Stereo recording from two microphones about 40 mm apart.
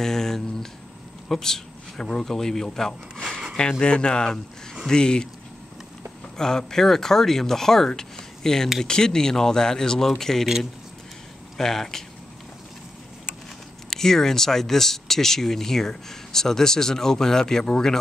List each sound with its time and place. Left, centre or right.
0.0 s a sound: centre
1.3 s speech: centre
6.3 s speech: centre
11.5 s speech: centre
13.8 s speech: centre